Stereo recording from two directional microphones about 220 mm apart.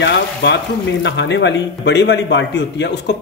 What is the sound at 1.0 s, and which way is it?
A man's voice, 55° left (ahead or behind).